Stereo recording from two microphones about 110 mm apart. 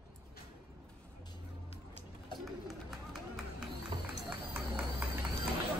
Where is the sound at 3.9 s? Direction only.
50° right (ahead or behind).